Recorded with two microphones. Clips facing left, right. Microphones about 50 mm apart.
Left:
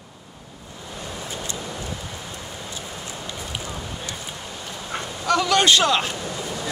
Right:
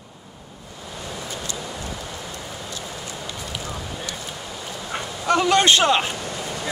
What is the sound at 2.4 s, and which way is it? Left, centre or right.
Rain, centre.